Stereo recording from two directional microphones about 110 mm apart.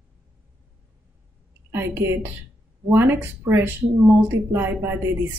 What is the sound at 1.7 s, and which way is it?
Speech, 20° right (ahead or behind).